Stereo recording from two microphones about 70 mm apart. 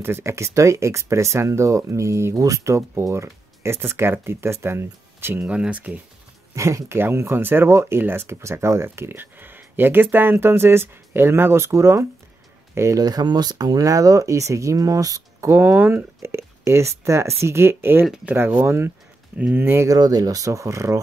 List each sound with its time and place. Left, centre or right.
0.0 s speech: right
5.5 s speech: centre
6.5 s speech: right
13.0 s speech: right
15.5 s speech: right
16.2 s speech: right
19.3 s speech: centre
19.6 s speech: right
19.9 s speech: right